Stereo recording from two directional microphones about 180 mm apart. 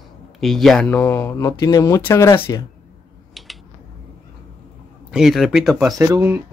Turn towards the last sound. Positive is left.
turn(degrees=-15)  # may be behind; listen again after turning